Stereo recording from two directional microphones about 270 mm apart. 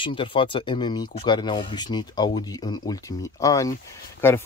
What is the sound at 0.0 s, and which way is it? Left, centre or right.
Speech, centre.